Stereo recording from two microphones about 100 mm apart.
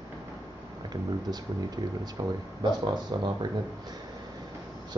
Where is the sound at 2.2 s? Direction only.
50° right (ahead or behind).